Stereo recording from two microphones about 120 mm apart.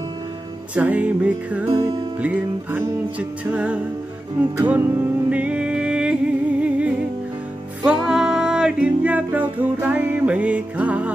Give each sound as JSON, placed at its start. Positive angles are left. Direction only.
{"t": 0.7, "sound": "music", "side_deg": -10}